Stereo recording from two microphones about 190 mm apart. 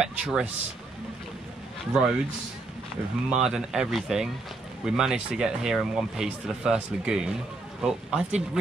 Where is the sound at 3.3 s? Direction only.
5° right (ahead or behind).